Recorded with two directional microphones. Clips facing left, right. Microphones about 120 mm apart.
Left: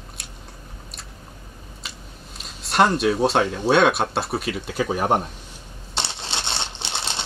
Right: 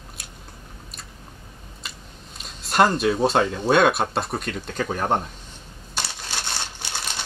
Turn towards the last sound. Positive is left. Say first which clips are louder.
# left 2 dB
turn(degrees=25)  # may be behind; listen again after turning